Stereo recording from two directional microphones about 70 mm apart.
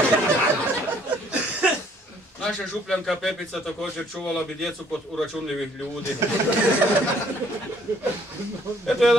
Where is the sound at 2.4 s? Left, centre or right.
Centre.